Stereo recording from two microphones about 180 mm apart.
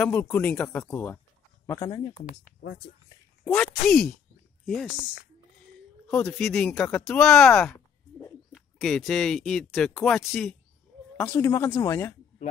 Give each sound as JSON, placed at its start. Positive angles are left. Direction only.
{"t": 0.0, "sound": "speech", "side_deg": 10}
{"t": 1.7, "sound": "speech", "side_deg": 20}
{"t": 3.4, "sound": "speech", "side_deg": 5}
{"t": 6.2, "sound": "speech", "side_deg": 0}
{"t": 11.1, "sound": "speech", "side_deg": 15}